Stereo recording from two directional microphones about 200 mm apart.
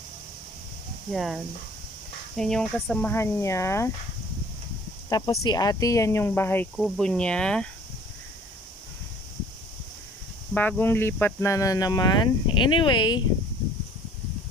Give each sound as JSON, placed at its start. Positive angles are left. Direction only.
{"t": 1.1, "sound": "speech", "side_deg": 0}
{"t": 5.1, "sound": "speech", "side_deg": 20}
{"t": 10.5, "sound": "speech", "side_deg": 10}